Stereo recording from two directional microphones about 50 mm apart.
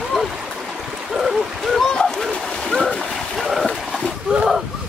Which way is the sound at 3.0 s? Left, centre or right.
Centre.